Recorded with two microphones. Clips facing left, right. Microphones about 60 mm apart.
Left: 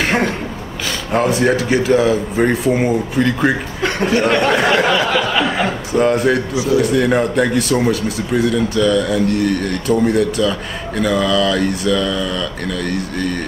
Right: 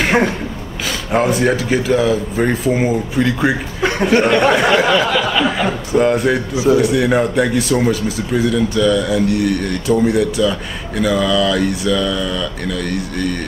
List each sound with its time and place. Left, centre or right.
0.0 s a sound: centre
1.1 s speech: centre
2.7 s speech: centre
6.5 s a man's voice: right
6.8 s speech: centre